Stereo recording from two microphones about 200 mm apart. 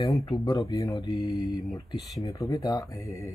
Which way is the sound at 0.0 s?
15° left (ahead or behind).